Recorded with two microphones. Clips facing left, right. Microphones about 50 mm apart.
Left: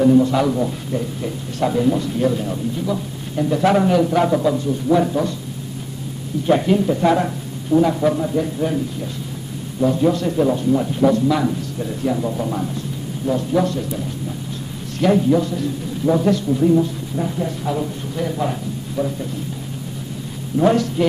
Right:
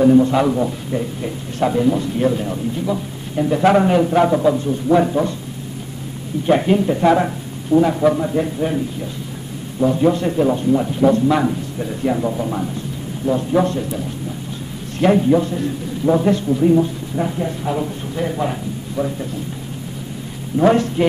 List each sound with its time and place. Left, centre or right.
0.0 s a man's voice: right
6.4 s a man's voice: centre
7.1 s a man's voice: centre
12.4 s a man's voice: centre
13.4 s a man's voice: right
15.0 s a man's voice: right
20.6 s a man's voice: right